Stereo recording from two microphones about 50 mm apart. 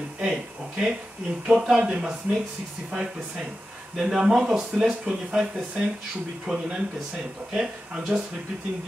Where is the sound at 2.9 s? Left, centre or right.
Centre.